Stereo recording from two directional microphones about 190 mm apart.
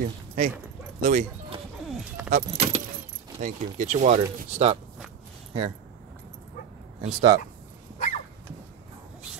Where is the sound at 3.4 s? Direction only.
40° right (ahead or behind).